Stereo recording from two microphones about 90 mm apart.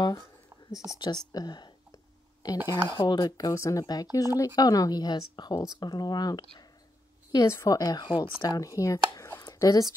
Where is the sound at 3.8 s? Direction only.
45° left (ahead or behind).